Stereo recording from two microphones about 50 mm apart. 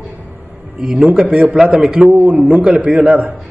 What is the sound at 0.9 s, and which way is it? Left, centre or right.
A man's voice, right.